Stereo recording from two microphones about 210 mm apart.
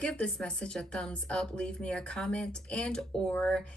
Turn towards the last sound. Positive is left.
turn(degrees=5)  # may be behind; listen again after turning